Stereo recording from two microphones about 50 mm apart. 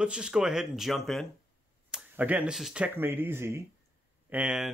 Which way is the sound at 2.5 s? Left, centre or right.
Centre.